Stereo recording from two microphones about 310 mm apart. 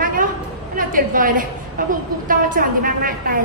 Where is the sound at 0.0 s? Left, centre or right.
Right.